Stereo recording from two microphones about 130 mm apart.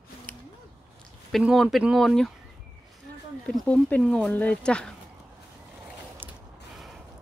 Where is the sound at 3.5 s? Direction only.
10° left (ahead or behind).